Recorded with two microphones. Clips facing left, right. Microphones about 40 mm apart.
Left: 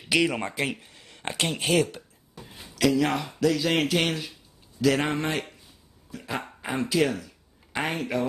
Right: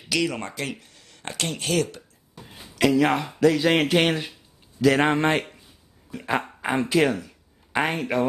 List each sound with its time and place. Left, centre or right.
0.1 s speech: centre
2.4 s speech: centre
7.1 s a sound: centre
7.9 s a man's voice: centre